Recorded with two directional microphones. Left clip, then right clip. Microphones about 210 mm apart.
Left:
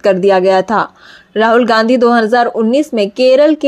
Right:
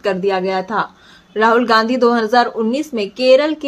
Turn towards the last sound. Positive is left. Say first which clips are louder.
# left 4 dB
turn(degrees=30)  # may be behind; listen again after turning